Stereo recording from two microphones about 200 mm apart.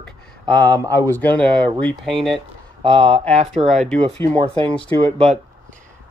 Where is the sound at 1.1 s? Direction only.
10° left (ahead or behind).